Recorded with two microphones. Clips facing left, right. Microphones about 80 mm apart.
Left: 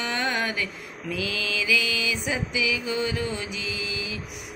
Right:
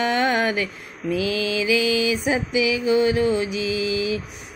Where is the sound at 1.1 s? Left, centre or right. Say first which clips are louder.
Right 7 dB; right.